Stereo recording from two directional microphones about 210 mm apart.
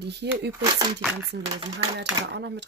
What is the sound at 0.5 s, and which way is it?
Speech, 20° right (ahead or behind).